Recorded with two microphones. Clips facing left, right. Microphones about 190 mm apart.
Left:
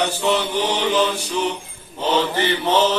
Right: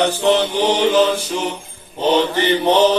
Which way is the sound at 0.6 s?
45° right (ahead or behind).